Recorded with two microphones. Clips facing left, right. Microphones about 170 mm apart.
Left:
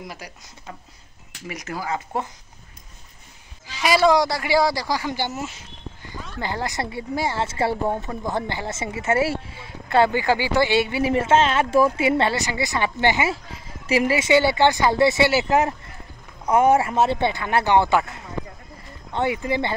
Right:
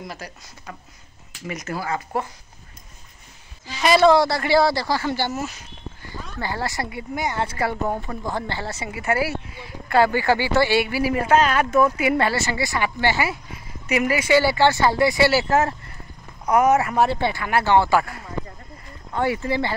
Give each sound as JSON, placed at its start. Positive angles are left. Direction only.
{"t": 0.0, "sound": "speech", "side_deg": 10}
{"t": 1.5, "sound": "speech", "side_deg": 15}
{"t": 3.7, "sound": "speech", "side_deg": 10}
{"t": 16.4, "sound": "speech", "side_deg": 30}